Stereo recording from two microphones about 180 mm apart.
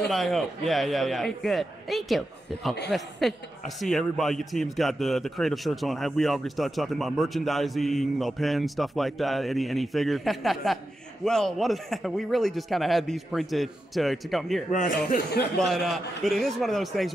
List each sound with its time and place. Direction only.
0.1 s a man's voice: centre (ahead or behind)
14.7 s speech: 45° left (ahead or behind)
15.5 s a man's voice: centre (ahead or behind)